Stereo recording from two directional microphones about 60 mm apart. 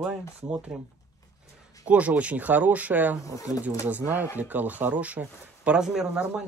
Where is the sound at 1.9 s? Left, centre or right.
Right.